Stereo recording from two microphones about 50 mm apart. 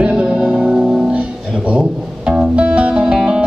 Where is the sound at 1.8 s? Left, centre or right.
Centre.